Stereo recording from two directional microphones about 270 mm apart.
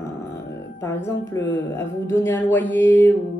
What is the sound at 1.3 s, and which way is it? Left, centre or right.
A woman's voice, centre.